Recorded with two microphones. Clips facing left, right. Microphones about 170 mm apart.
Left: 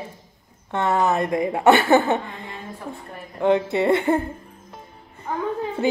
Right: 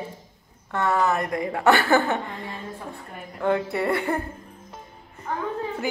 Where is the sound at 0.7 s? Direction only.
25° left (ahead or behind).